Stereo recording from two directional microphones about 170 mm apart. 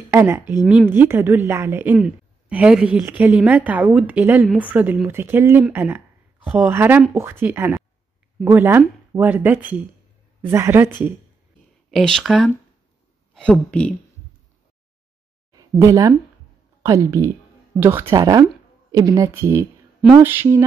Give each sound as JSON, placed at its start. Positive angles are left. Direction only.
{"t": 0.1, "sound": "a woman's voice", "side_deg": -15}
{"t": 11.9, "sound": "speech", "side_deg": 5}
{"t": 15.5, "sound": "a woman's voice", "side_deg": -20}